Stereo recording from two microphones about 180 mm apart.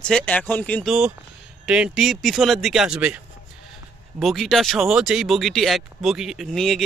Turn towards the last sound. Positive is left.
turn(degrees=0)  # may be behind; listen again after turning